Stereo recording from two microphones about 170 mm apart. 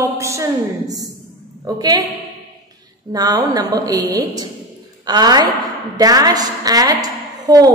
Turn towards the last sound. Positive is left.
turn(degrees=-20)  # may be behind; listen again after turning